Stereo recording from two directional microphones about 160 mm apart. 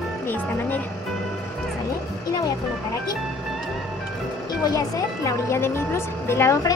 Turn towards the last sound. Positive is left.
turn(degrees=15)  # may be behind; listen again after turning